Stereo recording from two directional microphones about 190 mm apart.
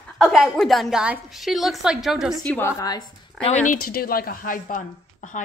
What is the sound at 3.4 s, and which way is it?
Speech, 40° left (ahead or behind).